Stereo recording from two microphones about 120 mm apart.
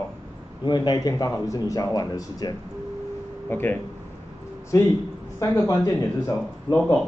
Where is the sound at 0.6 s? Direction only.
35° left (ahead or behind).